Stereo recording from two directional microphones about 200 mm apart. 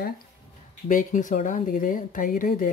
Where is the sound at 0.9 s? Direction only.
40° left (ahead or behind).